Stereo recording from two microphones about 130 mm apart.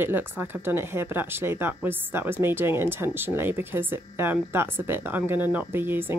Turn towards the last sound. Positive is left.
turn(degrees=-15)  # may be behind; listen again after turning